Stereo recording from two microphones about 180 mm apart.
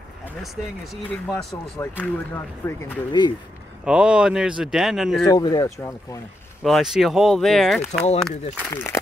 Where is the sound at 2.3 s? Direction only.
15° left (ahead or behind).